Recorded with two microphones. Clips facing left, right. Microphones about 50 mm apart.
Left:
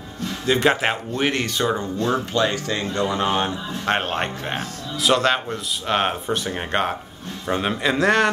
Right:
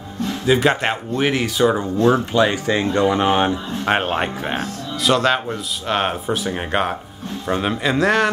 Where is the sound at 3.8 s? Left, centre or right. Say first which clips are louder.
Right 3 dB; centre.